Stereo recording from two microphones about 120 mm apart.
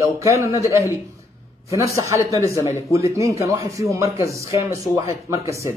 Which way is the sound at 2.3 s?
25° right (ahead or behind).